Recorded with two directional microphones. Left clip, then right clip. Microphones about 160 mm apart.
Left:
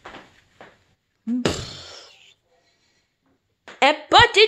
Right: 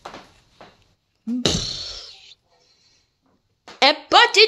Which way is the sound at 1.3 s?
5° left (ahead or behind).